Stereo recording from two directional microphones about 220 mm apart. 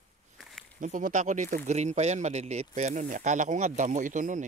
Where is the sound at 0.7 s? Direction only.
35° right (ahead or behind).